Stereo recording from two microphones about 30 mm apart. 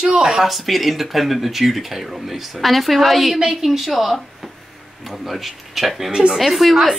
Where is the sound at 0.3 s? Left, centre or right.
Centre.